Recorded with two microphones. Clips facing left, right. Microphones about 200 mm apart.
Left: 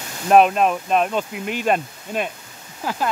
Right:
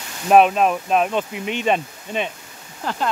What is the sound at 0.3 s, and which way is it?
Speech, centre (ahead or behind).